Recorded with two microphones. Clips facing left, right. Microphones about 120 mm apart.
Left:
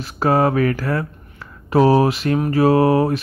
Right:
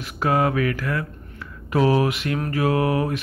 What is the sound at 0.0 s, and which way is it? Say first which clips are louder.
Mantra: left 4 dB; 35° left (ahead or behind).